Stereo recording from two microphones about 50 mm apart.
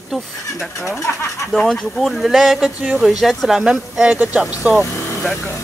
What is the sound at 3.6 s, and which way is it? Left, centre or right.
Speech, centre.